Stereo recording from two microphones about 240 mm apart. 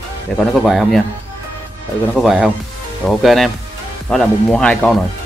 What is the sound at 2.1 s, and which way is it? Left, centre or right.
Speech, centre.